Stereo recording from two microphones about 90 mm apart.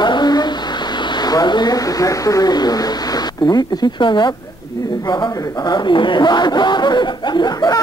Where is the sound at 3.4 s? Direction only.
60° left (ahead or behind).